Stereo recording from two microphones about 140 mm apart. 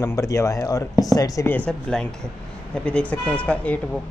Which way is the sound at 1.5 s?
10° left (ahead or behind).